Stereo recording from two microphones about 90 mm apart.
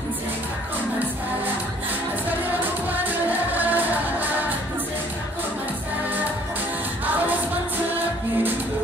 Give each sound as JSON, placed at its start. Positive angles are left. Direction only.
{"t": 3.0, "sound": "music", "side_deg": -20}